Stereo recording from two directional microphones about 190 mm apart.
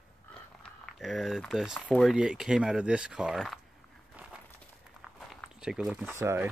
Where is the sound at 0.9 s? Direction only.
Centre (ahead or behind).